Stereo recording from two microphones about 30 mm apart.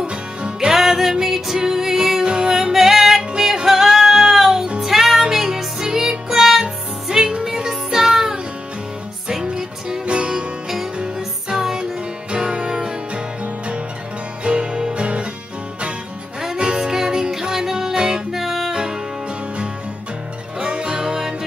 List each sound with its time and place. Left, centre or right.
0.0 s music: right
0.7 s music: centre
2.7 s music: centre
3.2 s music: right
10.0 s music: right
11.1 s music: centre
12.3 s music: right
14.4 s music: right
16.5 s music: right
17.9 s music: right
18.3 s music: centre
18.7 s music: right
20.5 s music: right